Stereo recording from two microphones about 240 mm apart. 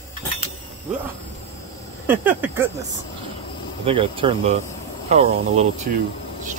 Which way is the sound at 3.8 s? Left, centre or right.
Right.